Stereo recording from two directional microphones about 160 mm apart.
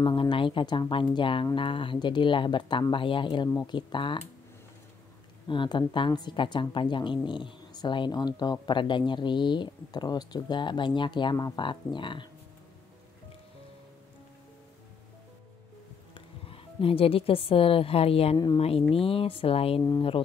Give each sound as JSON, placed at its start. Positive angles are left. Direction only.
{"t": 0.0, "sound": "speech", "side_deg": 30}
{"t": 5.5, "sound": "speech", "side_deg": 30}
{"t": 16.4, "sound": "speech", "side_deg": 35}